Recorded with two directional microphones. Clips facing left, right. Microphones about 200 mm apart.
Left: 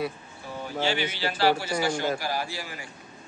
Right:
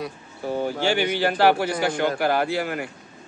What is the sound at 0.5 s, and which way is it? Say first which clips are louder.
A man's voice: right 6 dB; 55° right (ahead or behind).